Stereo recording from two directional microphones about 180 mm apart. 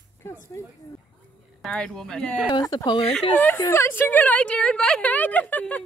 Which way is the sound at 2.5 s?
20° left (ahead or behind).